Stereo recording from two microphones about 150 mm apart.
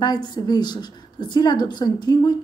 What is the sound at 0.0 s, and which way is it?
A woman's voice, 30° left (ahead or behind).